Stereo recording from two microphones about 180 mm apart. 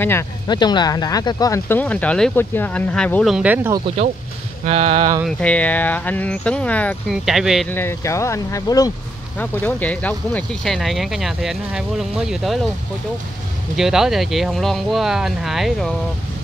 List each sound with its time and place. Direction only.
0.5 s speech: 25° left (ahead or behind); by 3.7 s 10° right (ahead or behind)
4.6 s speech: 30° right (ahead or behind)
5.4 s speech: 5° left (ahead or behind)
7.7 s speech: 15° left (ahead or behind)
9.4 s speech: 10° left (ahead or behind)
13.7 s speech: 5° right (ahead or behind)